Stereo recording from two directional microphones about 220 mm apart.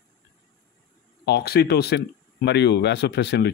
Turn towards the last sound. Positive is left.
turn(degrees=50)  # may be behind; listen again after turning